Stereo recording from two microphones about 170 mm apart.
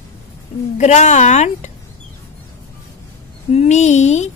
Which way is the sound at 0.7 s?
45° left (ahead or behind).